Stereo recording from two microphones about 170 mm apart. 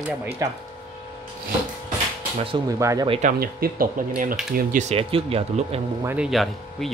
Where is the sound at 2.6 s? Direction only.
20° right (ahead or behind).